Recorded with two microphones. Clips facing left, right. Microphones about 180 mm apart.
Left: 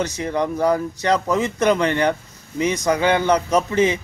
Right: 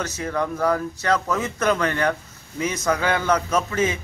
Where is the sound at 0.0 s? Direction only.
15° left (ahead or behind).